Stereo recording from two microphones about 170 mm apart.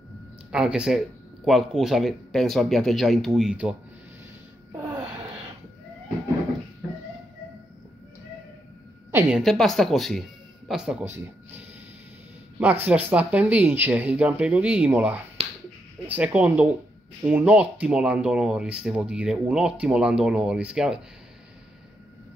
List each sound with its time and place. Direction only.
0.5 s speech: 5° right (ahead or behind)
9.1 s speech: centre (ahead or behind)
12.5 s speech: 10° right (ahead or behind)
15.4 s finger snapping: 40° right (ahead or behind)
16.1 s speech: 10° right (ahead or behind)